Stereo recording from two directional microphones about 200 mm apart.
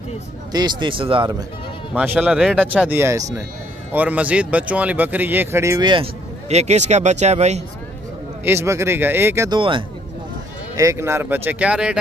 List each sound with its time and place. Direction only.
0.5 s speech: 20° right (ahead or behind)
2.0 s speech: 5° right (ahead or behind); by 6.0 s 20° right (ahead or behind)
6.5 s speech: 35° right (ahead or behind)
8.5 s speech: 15° right (ahead or behind)
9.6 s speech: 25° right (ahead or behind)
10.8 s speech: 15° right (ahead or behind)